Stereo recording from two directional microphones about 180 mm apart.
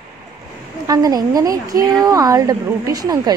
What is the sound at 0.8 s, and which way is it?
A woman's voice, 20° right (ahead or behind).